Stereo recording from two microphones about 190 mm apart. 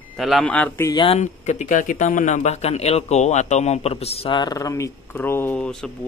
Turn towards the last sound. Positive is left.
turn(degrees=5)  # may be behind; listen again after turning